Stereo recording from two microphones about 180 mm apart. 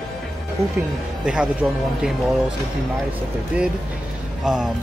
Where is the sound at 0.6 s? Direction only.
35° right (ahead or behind).